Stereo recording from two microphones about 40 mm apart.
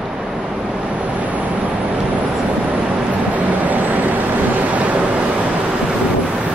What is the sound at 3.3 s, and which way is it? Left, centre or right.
Vehicle, right.